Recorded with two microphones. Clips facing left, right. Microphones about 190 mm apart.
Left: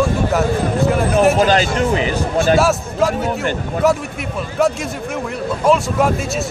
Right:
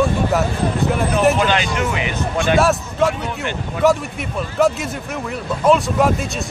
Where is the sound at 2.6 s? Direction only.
Centre (ahead or behind).